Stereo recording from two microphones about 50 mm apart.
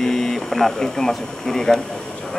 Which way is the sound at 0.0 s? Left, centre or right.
Centre.